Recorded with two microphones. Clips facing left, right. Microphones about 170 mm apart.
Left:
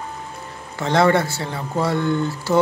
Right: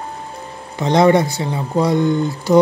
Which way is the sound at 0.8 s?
15° right (ahead or behind).